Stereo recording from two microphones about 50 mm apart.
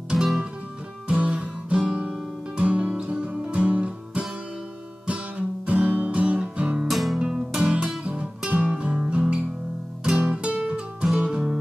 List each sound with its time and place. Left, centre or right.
1.0 s guitar: right
2.5 s music: right
5.7 s music: right
6.9 s music: centre
7.2 s music: centre